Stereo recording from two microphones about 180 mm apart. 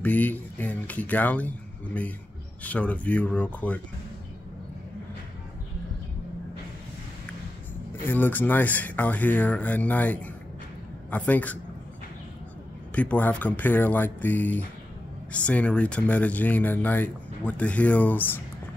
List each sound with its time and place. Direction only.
0.0 s speech: 10° left (ahead or behind)
2.6 s speech: 10° left (ahead or behind)
8.1 s speech: 10° left (ahead or behind)
12.9 s speech: 10° left (ahead or behind)